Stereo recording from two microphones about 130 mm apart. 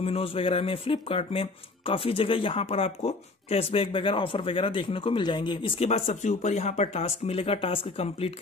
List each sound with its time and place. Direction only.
0.0 s speech: 50° left (ahead or behind)
5.8 s speech: 55° left (ahead or behind)